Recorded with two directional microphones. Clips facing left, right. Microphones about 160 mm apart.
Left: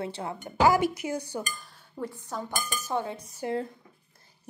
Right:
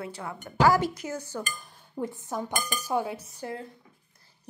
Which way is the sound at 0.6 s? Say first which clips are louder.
Even; 10° left (ahead or behind).